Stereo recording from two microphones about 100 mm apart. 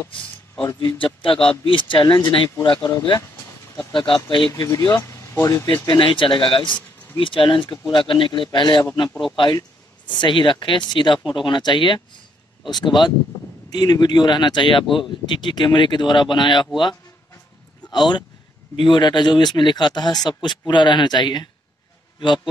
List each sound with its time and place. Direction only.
0.7 s speech: 55° left (ahead or behind)
3.9 s speech: 50° left (ahead or behind)
4.5 s speech: 30° left (ahead or behind)
5.9 s speech: 55° left (ahead or behind)